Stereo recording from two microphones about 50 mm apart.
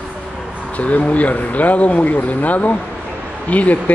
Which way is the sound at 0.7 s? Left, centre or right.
Left.